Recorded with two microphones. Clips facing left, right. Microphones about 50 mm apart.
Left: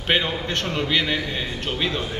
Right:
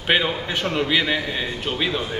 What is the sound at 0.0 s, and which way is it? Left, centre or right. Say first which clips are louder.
A man's voice: right 2 dB; centre.